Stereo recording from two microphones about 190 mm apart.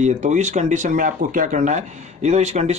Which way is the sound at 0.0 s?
40° right (ahead or behind).